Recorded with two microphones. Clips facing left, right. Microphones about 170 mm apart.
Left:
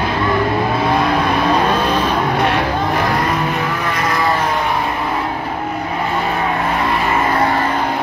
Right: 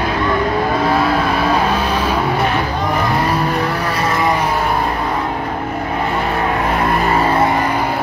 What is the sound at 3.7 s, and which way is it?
Vehicle, 30° right (ahead or behind).